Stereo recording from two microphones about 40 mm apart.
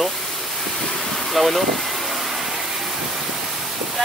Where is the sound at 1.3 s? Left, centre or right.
Centre.